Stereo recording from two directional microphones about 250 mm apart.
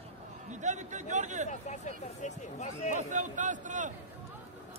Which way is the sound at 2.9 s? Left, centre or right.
Right.